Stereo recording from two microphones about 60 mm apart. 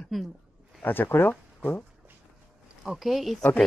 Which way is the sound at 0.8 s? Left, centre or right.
Left.